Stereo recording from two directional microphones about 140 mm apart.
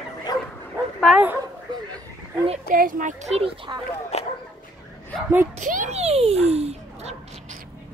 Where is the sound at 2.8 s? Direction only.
75° right (ahead or behind); by 3.8 s 40° right (ahead or behind).